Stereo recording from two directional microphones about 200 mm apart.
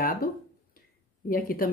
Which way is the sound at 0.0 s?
45° left (ahead or behind).